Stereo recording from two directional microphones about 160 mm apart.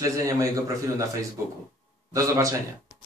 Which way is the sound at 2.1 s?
20° right (ahead or behind).